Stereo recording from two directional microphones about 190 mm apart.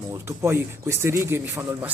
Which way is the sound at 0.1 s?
15° right (ahead or behind).